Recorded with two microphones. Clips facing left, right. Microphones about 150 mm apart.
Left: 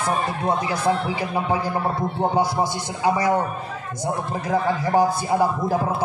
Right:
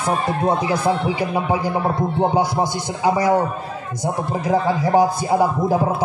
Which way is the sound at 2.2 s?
15° right (ahead or behind).